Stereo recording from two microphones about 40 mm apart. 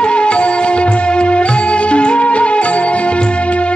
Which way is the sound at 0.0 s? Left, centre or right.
Left.